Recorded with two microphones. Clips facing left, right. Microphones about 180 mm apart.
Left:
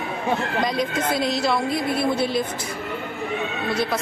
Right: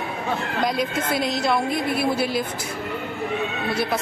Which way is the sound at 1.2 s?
Centre (ahead or behind).